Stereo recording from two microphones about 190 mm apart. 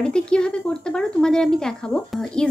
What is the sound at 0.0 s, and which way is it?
Speech, 5° left (ahead or behind).